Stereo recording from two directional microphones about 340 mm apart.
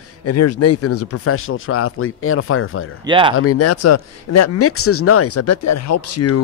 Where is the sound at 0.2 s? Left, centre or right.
Left.